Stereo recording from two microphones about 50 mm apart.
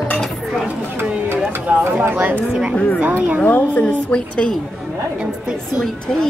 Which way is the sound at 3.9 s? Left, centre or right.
Centre.